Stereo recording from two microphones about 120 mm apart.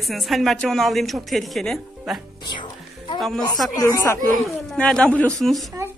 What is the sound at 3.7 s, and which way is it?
Speech, 30° left (ahead or behind).